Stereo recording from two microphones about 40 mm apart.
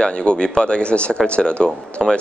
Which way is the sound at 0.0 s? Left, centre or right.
Left.